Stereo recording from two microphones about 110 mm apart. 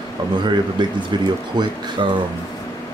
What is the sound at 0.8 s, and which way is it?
Speech, 45° right (ahead or behind).